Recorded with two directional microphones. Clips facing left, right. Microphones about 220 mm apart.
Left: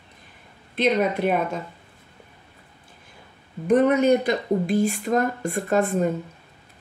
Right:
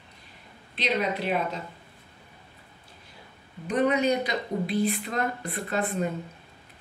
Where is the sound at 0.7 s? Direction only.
50° left (ahead or behind).